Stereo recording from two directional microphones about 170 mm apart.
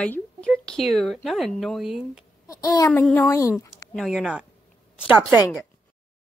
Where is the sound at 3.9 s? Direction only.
5° right (ahead or behind).